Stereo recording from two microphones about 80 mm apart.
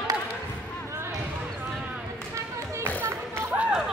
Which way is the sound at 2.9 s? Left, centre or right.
Right.